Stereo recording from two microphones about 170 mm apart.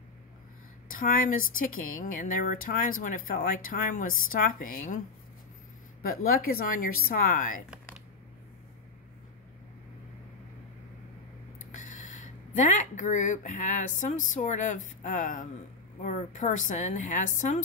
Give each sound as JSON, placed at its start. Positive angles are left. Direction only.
{"t": 0.8, "sound": "speech", "side_deg": 55}
{"t": 6.0, "sound": "speech", "side_deg": 60}
{"t": 11.7, "sound": "a woman's voice", "side_deg": 45}